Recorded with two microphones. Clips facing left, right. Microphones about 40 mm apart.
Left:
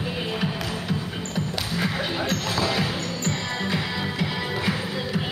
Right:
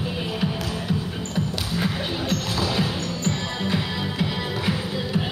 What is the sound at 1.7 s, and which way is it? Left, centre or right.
Basketball bounce, centre.